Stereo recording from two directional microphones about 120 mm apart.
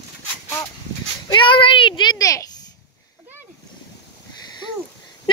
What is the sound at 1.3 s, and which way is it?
A child's voice, 45° left (ahead or behind).